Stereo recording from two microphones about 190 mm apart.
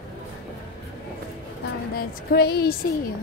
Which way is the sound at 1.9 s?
55° left (ahead or behind).